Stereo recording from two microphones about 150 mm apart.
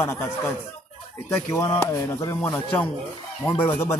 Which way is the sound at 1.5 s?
25° left (ahead or behind).